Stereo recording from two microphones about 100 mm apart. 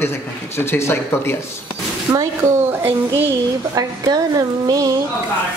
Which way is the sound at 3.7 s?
40° right (ahead or behind).